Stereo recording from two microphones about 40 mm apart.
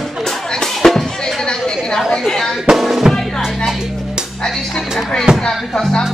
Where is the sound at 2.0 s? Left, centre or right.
Centre.